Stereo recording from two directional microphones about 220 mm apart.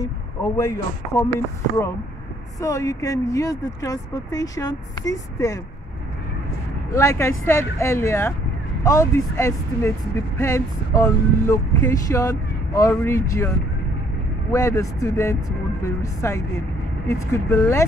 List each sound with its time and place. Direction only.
0.0 s speech: 15° left (ahead or behind)
2.6 s speech: 15° left (ahead or behind)
6.9 s speech: 15° left (ahead or behind)
14.5 s speech: 15° left (ahead or behind)